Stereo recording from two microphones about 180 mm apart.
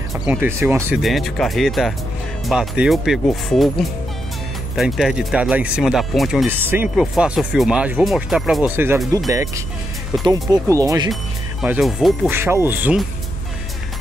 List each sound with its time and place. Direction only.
0.1 s speech: 10° right (ahead or behind)
1.0 s speech: centre (ahead or behind)
8.7 s speech: 15° right (ahead or behind)
10.7 s speech: 20° right (ahead or behind)
11.6 s speech: 5° right (ahead or behind)
12.3 s speech: 15° right (ahead or behind)